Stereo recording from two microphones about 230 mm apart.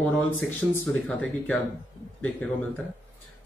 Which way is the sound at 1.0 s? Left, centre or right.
Centre.